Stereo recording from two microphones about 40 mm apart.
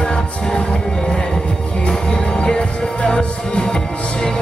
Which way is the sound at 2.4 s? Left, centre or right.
Left.